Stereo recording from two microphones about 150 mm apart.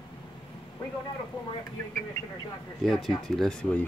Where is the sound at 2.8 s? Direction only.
Centre (ahead or behind).